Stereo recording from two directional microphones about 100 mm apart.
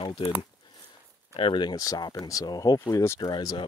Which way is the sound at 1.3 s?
65° left (ahead or behind).